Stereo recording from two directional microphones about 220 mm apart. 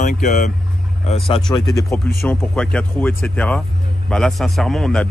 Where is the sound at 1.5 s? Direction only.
10° left (ahead or behind).